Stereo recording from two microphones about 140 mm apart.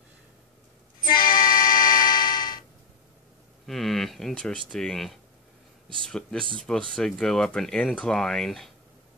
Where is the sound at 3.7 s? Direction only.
Centre (ahead or behind).